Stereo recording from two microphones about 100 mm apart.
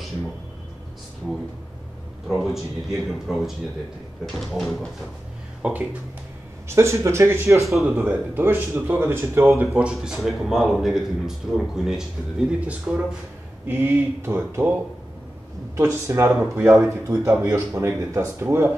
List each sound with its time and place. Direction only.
2.2 s a man's voice: centre (ahead or behind)
5.6 s speech: 15° right (ahead or behind)
6.7 s speech: 30° right (ahead or behind)
7.6 s a man's voice: centre (ahead or behind)
8.0 s speech: 20° right (ahead or behind)
9.8 s a man's voice: 5° right (ahead or behind); by 18.7 s 30° right (ahead or behind)